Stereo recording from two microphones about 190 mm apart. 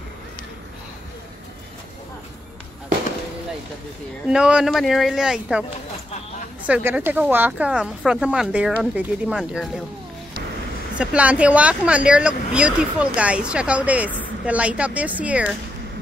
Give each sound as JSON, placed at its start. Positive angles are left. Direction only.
{"t": 4.3, "sound": "speech", "side_deg": -5}
{"t": 11.0, "sound": "speech", "side_deg": -5}